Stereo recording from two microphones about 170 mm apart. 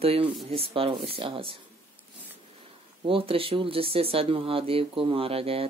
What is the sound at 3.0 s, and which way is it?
Speech, 30° right (ahead or behind).